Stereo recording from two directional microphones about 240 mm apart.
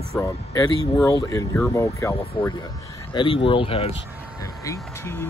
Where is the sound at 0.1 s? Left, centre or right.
Centre.